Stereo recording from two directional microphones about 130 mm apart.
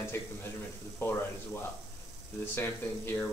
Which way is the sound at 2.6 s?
15° left (ahead or behind).